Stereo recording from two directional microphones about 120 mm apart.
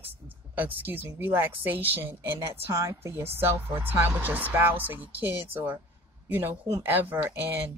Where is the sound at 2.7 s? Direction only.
25° right (ahead or behind).